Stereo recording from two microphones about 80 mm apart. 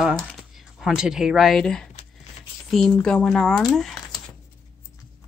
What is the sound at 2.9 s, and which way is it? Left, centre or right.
Speech, centre.